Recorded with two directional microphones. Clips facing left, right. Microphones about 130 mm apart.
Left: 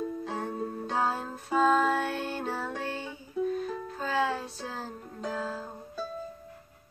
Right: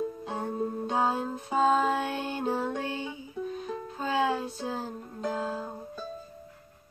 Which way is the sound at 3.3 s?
Centre (ahead or behind).